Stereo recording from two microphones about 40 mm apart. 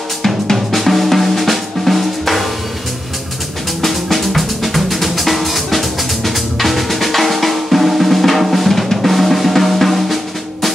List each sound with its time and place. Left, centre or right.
0.2 s drum: centre
3.8 s drum: centre